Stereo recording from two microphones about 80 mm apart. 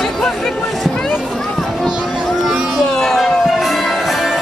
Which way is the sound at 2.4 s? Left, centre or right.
Centre.